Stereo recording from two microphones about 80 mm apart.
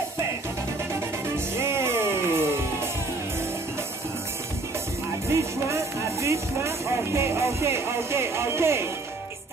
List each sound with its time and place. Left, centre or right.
1.6 s music: right
5.3 s speech: right